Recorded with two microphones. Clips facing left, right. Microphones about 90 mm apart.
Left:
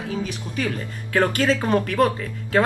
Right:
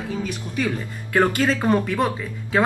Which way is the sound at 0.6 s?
15° right (ahead or behind).